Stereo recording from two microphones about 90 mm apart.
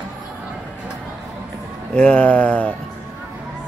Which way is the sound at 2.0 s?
20° left (ahead or behind).